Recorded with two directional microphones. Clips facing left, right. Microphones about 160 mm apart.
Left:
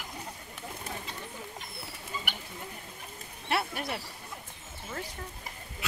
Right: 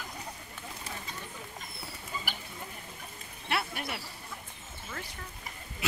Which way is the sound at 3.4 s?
35° left (ahead or behind).